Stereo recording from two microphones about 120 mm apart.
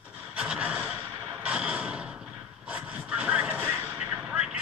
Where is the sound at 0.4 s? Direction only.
10° right (ahead or behind).